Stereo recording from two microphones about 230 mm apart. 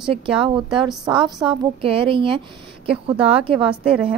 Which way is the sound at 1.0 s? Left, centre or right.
Centre.